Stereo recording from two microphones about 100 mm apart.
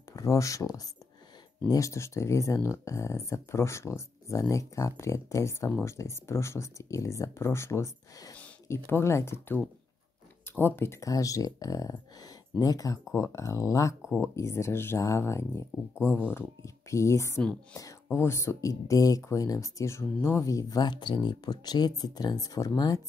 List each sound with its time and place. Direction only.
0.1 s speech: 35° left (ahead or behind)